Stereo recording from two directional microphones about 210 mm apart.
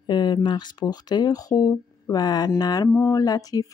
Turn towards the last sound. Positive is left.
turn(degrees=15)  # may be behind; listen again after turning